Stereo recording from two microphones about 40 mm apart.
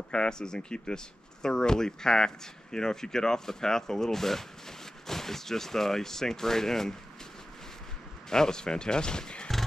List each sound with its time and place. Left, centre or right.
0.1 s speech: left
8.3 s speech: centre